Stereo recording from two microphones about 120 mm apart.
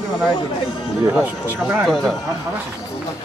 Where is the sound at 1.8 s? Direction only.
5° left (ahead or behind).